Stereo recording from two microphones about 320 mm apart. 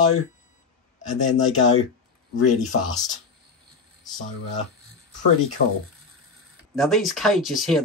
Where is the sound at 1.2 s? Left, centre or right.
Left.